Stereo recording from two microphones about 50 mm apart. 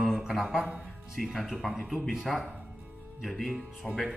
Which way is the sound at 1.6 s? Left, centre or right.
Centre.